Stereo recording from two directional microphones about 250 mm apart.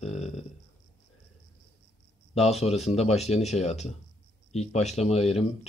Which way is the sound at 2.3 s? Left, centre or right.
Left.